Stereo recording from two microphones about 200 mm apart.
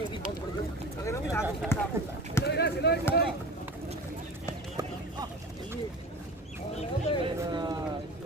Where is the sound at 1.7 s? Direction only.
10° left (ahead or behind).